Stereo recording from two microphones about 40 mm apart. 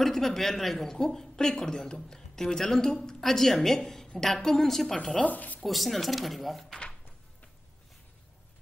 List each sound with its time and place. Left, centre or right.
0.0 s a woman's voice: centre
5.2 s speech: left
5.7 s speech: centre